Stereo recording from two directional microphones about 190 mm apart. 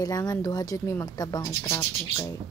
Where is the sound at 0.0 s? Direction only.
20° left (ahead or behind).